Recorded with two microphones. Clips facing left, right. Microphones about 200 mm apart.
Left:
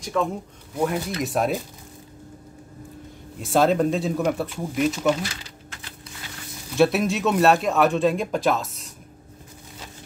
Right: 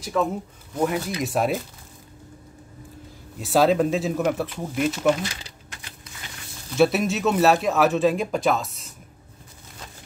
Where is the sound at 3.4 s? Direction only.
5° right (ahead or behind).